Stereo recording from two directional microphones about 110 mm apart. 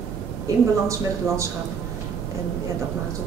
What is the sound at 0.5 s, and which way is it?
Speech, 30° right (ahead or behind).